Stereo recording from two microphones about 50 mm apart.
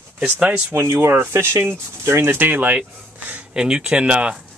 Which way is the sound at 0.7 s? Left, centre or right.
Right.